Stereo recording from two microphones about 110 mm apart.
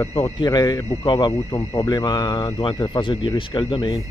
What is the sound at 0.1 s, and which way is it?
Speech, 55° left (ahead or behind).